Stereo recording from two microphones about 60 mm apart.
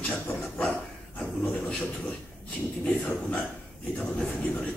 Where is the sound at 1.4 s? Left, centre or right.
Centre.